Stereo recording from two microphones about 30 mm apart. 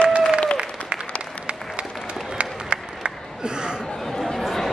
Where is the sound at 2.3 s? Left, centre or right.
Right.